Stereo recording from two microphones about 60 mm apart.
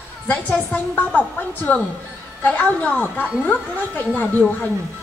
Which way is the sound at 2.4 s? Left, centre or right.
Left.